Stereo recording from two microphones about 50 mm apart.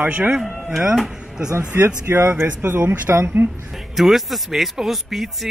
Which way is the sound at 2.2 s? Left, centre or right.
Right.